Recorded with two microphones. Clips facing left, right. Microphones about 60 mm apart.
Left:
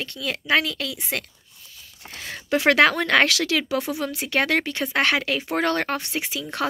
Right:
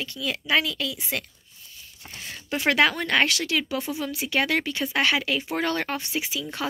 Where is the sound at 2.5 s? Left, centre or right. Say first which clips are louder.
Left 4 dB; left.